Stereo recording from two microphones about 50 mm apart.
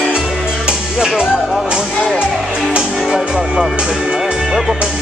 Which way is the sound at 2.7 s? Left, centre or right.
Centre.